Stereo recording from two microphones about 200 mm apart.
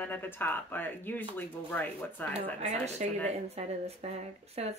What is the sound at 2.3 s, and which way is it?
Speech, 35° right (ahead or behind).